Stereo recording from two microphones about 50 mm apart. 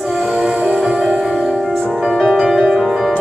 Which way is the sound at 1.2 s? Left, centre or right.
Centre.